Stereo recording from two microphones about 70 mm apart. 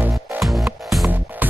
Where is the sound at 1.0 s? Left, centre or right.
Right.